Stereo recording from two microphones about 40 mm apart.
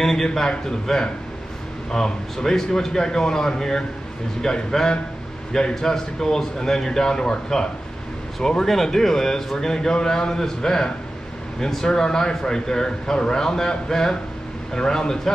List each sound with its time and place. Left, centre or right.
0.0 s speech: centre